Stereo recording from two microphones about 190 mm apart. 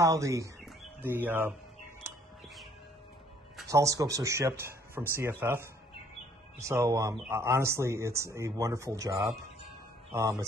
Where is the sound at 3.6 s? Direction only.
15° right (ahead or behind).